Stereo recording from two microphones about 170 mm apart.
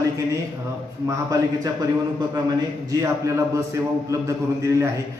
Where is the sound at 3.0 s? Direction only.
15° right (ahead or behind).